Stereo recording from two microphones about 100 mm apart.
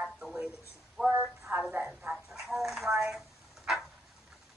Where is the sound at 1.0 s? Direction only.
10° left (ahead or behind).